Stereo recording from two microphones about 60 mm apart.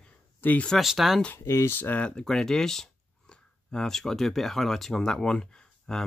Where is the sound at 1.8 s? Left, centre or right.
Left.